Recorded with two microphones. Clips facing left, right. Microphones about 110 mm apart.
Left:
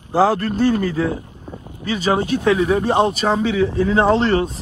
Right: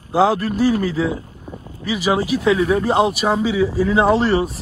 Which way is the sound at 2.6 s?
25° left (ahead or behind).